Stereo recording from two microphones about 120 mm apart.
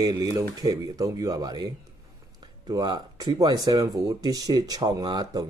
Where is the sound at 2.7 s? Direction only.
35° right (ahead or behind).